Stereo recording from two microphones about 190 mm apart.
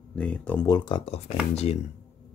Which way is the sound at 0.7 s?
25° left (ahead or behind).